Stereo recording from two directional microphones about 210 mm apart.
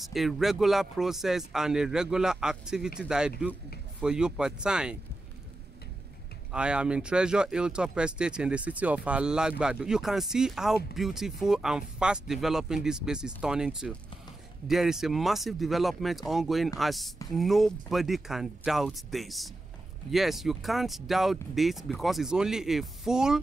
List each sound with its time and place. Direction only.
0.0 s speech: centre (ahead or behind)
6.5 s speech: 5° right (ahead or behind)